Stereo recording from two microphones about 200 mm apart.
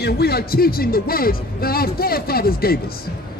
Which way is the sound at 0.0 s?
50° left (ahead or behind).